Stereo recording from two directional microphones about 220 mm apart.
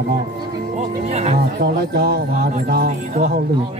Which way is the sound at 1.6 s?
45° right (ahead or behind).